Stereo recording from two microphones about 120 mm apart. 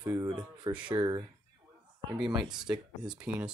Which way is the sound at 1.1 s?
35° right (ahead or behind).